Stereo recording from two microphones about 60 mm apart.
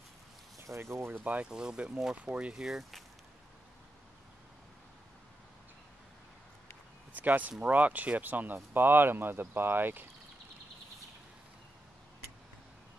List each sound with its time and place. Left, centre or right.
0.6 s speech: right
1.1 s speech: right
1.4 s speech: centre
7.2 s speech: right